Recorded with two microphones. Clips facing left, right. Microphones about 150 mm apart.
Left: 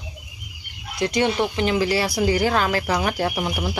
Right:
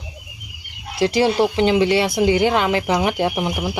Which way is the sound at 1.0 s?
30° right (ahead or behind).